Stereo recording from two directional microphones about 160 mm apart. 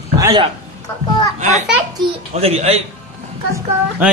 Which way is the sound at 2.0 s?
30° right (ahead or behind).